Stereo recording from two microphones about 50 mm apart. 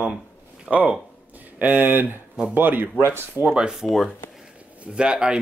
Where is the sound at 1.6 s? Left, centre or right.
Right.